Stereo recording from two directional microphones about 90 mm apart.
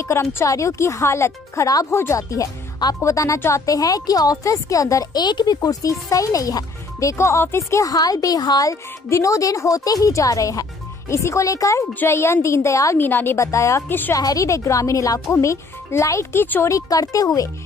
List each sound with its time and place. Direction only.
0.0 s a woman's voice: 30° left (ahead or behind)
11.9 s a woman's voice: 25° left (ahead or behind)
12.9 s speech: 25° left (ahead or behind)
14.1 s a woman's voice: 40° left (ahead or behind); by 16.6 s 25° left (ahead or behind)
16.6 s a woman's voice: 40° left (ahead or behind)